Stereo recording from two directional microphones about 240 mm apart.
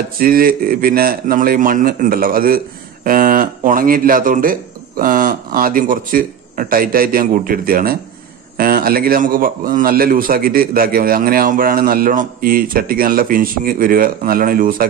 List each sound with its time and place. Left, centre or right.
0.2 s a man's voice: right